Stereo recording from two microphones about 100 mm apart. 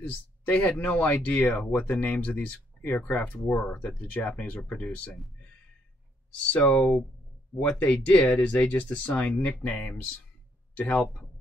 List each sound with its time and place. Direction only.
0.0 s speech: 15° left (ahead or behind)
2.9 s speech: 5° left (ahead or behind)
3.6 s speech: 15° left (ahead or behind)
6.5 s speech: 5° left (ahead or behind)